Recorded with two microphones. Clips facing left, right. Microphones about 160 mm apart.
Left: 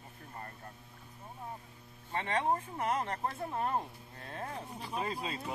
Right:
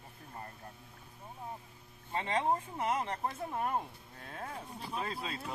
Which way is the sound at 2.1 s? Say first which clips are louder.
Even; 15° right (ahead or behind).